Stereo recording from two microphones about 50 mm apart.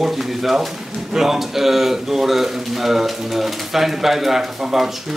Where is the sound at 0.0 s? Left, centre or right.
Centre.